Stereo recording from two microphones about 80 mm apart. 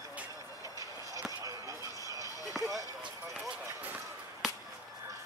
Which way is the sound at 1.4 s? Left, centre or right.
Right.